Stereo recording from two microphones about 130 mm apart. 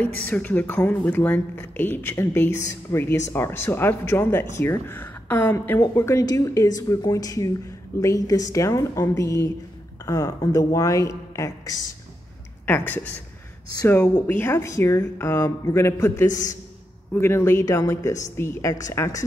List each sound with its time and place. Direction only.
0.0 s a woman's voice: 10° left (ahead or behind)
14.2 s a woman's voice: 15° left (ahead or behind)
16.3 s a man's voice: 80° left
17.1 s a woman's voice: 20° left (ahead or behind)